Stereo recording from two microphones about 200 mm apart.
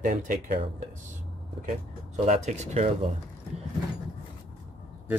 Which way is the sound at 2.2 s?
35° right (ahead or behind).